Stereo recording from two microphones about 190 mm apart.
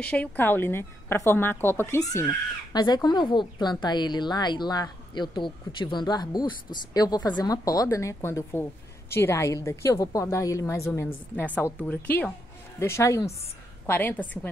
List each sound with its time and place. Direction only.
0.1 s a woman's voice: 10° left (ahead or behind)